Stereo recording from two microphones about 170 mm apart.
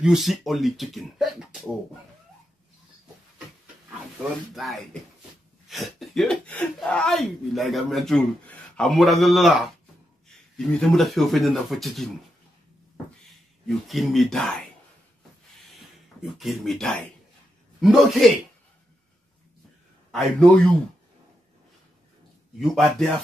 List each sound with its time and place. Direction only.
0.0 s speech: centre (ahead or behind)
4.2 s speech: centre (ahead or behind)
13.7 s speech: centre (ahead or behind)
15.7 s a sound: centre (ahead or behind)
17.7 s speech: centre (ahead or behind)
20.1 s speech: 5° left (ahead or behind)
22.6 s speech: centre (ahead or behind)